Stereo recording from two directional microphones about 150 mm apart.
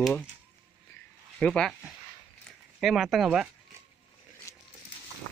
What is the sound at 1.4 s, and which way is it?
Speech, 5° left (ahead or behind).